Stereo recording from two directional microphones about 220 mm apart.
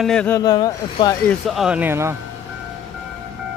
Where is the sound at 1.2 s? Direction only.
Centre (ahead or behind).